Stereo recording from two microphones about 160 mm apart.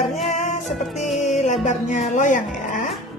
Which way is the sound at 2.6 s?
50° left (ahead or behind).